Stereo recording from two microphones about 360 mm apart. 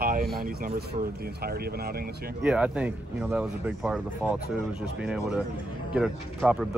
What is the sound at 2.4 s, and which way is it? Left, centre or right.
Speech, centre.